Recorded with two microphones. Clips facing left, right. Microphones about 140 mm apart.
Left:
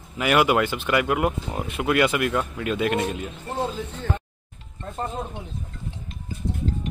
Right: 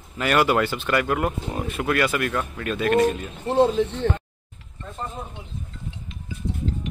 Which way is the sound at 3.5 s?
75° right (ahead or behind).